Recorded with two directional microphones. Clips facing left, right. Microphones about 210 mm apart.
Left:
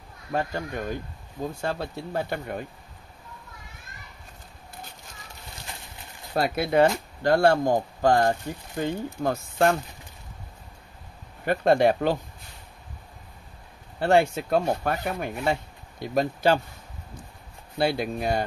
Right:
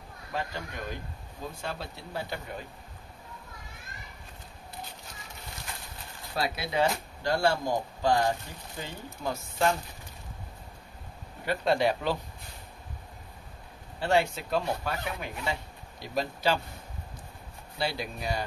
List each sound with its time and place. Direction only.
0.3 s speech: 50° left (ahead or behind)
6.3 s speech: 50° left (ahead or behind)
11.4 s speech: 50° left (ahead or behind)
13.9 s speech: 50° left (ahead or behind)
17.7 s speech: 55° left (ahead or behind)